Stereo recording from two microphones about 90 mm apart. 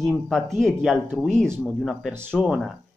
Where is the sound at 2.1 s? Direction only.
25° right (ahead or behind).